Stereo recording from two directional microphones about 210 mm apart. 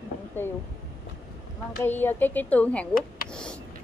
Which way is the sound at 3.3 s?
5° left (ahead or behind).